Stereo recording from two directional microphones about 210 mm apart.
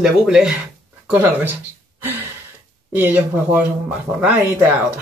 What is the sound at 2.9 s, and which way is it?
Speech, 10° right (ahead or behind).